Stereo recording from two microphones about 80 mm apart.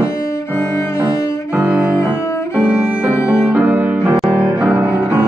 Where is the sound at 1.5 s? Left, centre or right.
Centre.